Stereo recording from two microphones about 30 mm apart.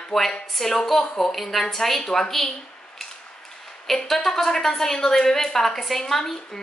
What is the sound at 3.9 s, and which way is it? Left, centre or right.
A woman's voice, centre.